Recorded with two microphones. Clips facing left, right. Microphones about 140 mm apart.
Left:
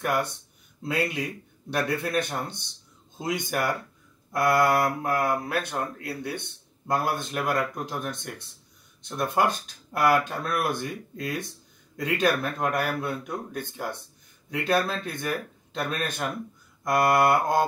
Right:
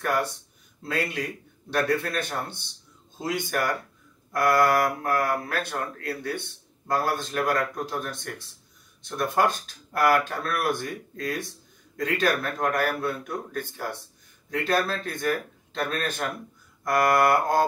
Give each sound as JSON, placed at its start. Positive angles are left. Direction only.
{"t": 0.8, "sound": "speech", "side_deg": 15}